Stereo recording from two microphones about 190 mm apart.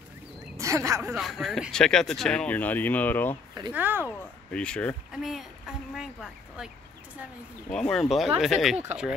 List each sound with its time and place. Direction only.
0.6 s speech: 15° right (ahead or behind)
1.1 s speech: centre (ahead or behind)
3.7 s speech: 10° right (ahead or behind)
4.0 s speech: 5° left (ahead or behind)
7.7 s speech: 5° left (ahead or behind)